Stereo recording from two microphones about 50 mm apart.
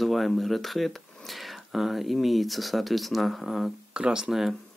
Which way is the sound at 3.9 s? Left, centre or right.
Centre.